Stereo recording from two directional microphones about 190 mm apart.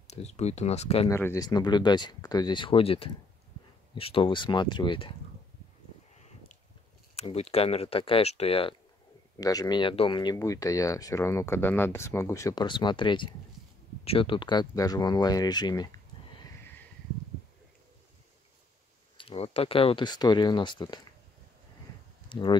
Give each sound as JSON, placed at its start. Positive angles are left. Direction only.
{"t": 0.0, "sound": "speech", "side_deg": 35}
{"t": 1.0, "sound": "speech", "side_deg": 15}
{"t": 7.2, "sound": "speech", "side_deg": 35}
{"t": 9.4, "sound": "speech", "side_deg": 20}
{"t": 19.1, "sound": "speech", "side_deg": 30}
{"t": 22.3, "sound": "speech", "side_deg": 25}